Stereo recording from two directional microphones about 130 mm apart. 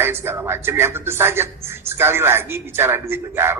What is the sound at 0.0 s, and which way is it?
A man's voice, 20° right (ahead or behind).